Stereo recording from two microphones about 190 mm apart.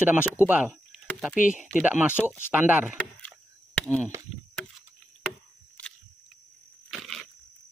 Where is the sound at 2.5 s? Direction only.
5° right (ahead or behind).